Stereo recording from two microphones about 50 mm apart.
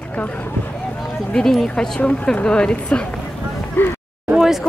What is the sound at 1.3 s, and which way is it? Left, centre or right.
Speech, centre.